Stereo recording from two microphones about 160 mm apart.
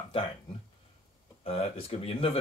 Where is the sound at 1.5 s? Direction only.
35° left (ahead or behind).